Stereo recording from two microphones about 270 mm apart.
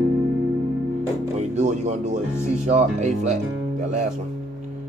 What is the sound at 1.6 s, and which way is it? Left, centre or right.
Speech, right.